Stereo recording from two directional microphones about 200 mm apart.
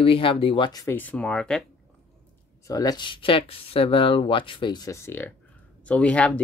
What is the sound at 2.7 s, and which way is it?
Speech, 20° left (ahead or behind).